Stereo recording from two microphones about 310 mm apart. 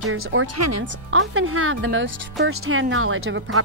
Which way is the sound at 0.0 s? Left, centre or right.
Right.